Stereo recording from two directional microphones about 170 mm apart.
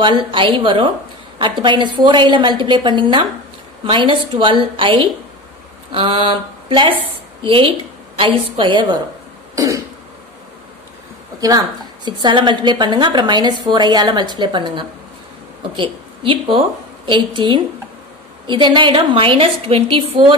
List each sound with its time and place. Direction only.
0.0 s a woman's voice: 30° right (ahead or behind)
11.4 s a woman's voice: 25° right (ahead or behind)